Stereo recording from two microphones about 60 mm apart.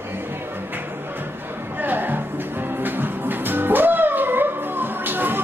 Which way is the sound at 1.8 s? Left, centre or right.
Right.